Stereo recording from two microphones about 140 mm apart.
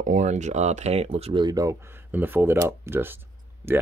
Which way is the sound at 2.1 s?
15° right (ahead or behind).